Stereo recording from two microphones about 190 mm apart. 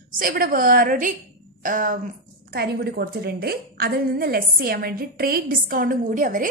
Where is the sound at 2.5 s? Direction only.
55° right (ahead or behind).